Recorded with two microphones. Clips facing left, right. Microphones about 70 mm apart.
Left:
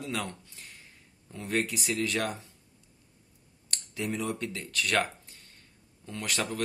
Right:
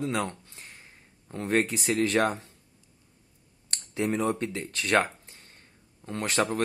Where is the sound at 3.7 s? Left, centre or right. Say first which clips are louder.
Right 5 dB; right.